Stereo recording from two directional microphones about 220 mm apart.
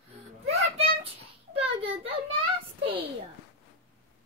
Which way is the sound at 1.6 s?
25° right (ahead or behind).